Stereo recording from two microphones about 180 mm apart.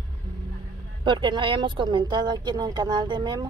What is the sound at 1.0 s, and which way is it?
Speech, 25° right (ahead or behind).